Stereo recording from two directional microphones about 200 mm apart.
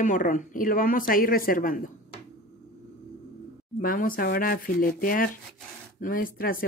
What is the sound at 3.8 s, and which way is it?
Speech, 45° left (ahead or behind).